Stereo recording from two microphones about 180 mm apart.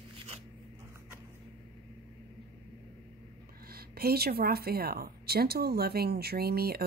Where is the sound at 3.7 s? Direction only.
60° right (ahead or behind).